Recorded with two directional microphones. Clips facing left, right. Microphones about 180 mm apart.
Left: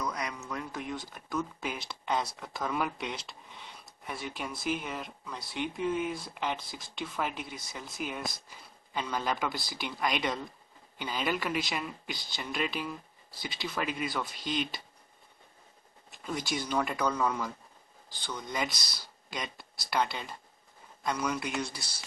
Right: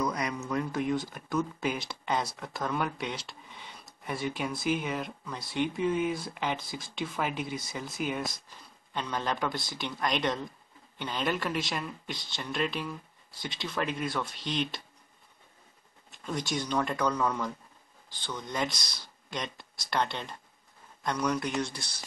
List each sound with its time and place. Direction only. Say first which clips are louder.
0.3 s speech: right 7 dB; centre (ahead or behind)
16.3 s speech: right 1 dB; 5° left (ahead or behind)